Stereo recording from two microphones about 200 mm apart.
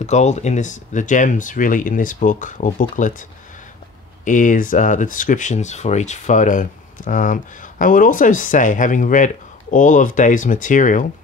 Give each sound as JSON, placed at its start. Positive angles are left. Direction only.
{"t": 0.0, "sound": "speech", "side_deg": 35}